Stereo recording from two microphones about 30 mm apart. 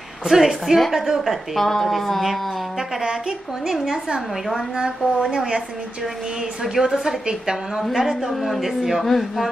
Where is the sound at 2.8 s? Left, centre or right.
Centre.